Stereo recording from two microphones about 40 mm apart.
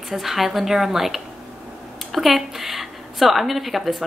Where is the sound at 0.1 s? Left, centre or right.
Centre.